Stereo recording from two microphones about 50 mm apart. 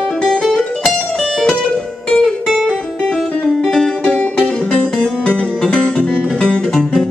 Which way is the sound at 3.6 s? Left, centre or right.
Centre.